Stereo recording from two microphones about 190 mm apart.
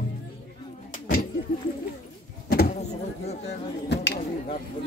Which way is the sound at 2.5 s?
55° left (ahead or behind).